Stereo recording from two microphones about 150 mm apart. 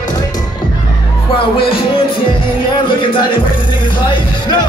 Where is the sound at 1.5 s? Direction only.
35° left (ahead or behind).